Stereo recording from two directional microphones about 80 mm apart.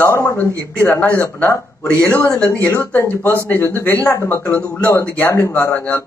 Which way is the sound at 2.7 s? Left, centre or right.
Left.